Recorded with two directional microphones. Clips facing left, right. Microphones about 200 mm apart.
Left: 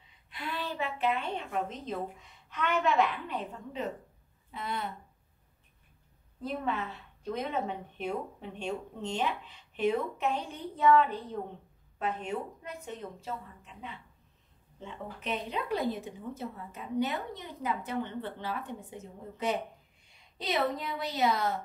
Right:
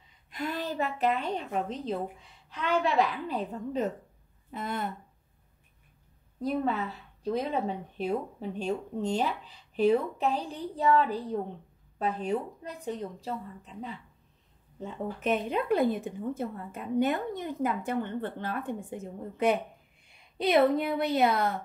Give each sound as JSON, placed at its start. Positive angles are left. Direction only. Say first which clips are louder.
{"t": 0.3, "sound": "a woman's voice", "louder": "right 4 dB", "side_deg": -45}
{"t": 6.4, "sound": "a woman's voice", "louder": "right 5 dB", "side_deg": -35}